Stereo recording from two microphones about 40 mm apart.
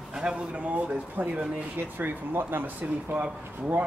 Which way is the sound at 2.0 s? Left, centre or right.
Right.